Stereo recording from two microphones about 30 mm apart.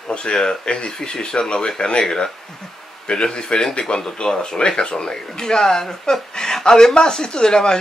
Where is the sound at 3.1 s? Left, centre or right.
Left.